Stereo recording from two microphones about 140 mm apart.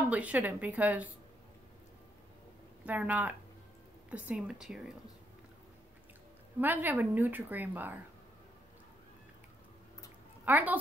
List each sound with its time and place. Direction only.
0.1 s a woman's voice: 10° right (ahead or behind)
2.8 s a woman's voice: 10° right (ahead or behind)
6.6 s a woman's voice: 15° right (ahead or behind)
10.4 s a woman's voice: 10° right (ahead or behind)